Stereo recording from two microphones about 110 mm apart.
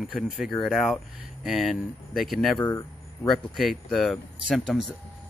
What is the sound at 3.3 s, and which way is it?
Speech, centre (ahead or behind).